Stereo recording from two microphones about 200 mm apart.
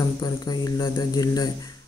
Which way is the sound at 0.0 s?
20° left (ahead or behind).